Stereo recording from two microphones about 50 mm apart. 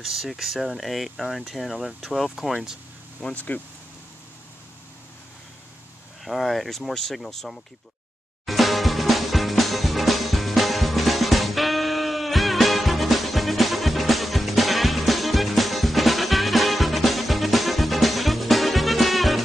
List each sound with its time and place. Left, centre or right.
0.0 s speech: centre
2.5 s speech: centre
3.3 s speech: left
6.2 s speech: centre
8.5 s music: centre